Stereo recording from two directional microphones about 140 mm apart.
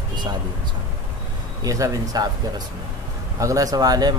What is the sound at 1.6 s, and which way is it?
Speech, 25° right (ahead or behind).